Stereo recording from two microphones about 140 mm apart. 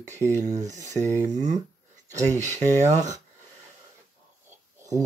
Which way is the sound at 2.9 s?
60° right (ahead or behind).